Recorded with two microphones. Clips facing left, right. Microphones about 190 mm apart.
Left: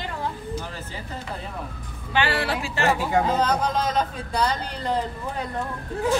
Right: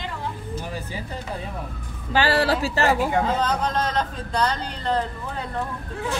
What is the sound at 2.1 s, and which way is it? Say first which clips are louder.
Speech: right 4 dB; 40° right (ahead or behind).